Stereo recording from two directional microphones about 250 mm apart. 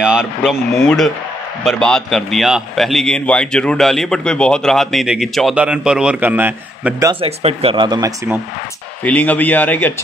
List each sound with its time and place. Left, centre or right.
0.0 s a man's voice: centre
7.1 s speech: right
9.0 s speech: centre